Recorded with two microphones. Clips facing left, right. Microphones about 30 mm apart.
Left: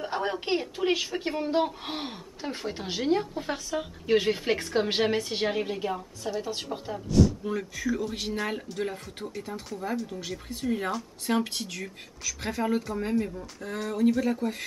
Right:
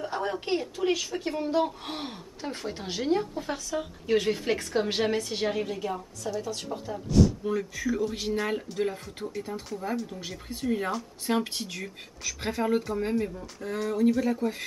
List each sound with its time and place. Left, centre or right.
0.0 s speech: left
7.1 s speech: centre